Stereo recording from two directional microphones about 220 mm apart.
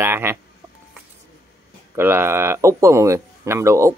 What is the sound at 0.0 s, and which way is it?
Speech, 10° right (ahead or behind).